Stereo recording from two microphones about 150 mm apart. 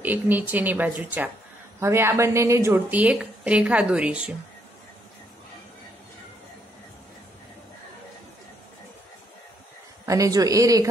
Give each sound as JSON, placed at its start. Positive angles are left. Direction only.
{"t": 0.0, "sound": "a woman's voice", "side_deg": -10}
{"t": 10.0, "sound": "speech", "side_deg": -20}